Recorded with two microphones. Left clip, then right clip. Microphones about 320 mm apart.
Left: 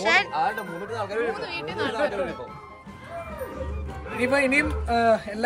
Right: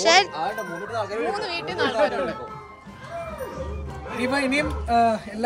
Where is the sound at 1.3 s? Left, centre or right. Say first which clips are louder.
Right 4 dB; right.